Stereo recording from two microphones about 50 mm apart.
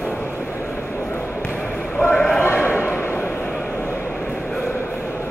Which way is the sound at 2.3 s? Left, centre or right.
Left.